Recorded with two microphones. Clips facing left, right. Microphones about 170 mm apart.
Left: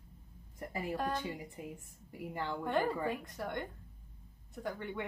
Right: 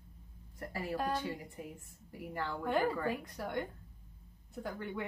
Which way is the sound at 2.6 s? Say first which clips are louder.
Right 1 dB; centre (ahead or behind).